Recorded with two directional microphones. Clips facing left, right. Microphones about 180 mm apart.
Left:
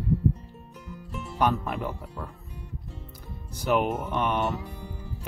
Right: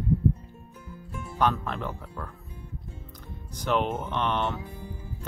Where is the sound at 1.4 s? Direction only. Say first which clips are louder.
Left 1 dB; 10° left (ahead or behind).